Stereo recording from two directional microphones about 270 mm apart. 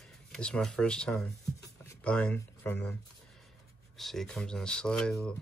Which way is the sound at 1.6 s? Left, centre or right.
Centre.